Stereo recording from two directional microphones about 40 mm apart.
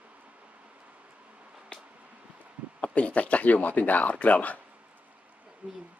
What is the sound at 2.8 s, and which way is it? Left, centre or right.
Speech, left.